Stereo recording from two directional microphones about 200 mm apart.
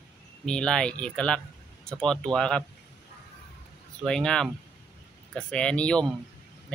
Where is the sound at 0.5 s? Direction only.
5° left (ahead or behind).